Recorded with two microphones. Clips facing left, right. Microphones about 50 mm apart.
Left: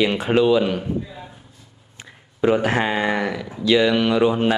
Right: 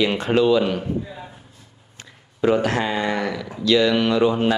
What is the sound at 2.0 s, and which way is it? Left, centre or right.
Speech, centre.